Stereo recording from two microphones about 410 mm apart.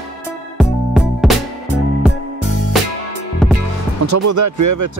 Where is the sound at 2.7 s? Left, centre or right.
Centre.